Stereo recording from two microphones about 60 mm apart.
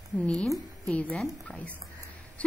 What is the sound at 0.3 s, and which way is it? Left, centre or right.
Speech, centre.